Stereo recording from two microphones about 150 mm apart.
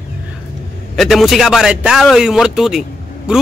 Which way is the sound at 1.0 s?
Centre (ahead or behind).